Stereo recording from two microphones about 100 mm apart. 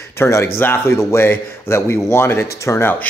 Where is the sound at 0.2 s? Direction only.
25° left (ahead or behind).